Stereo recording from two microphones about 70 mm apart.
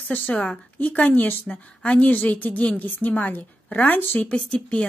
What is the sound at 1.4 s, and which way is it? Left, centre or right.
A woman's voice, centre.